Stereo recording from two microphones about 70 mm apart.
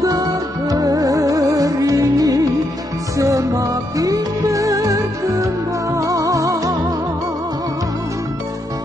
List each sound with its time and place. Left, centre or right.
0.0 s music: right